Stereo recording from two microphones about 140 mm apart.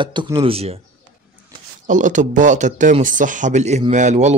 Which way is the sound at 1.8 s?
65° right (ahead or behind).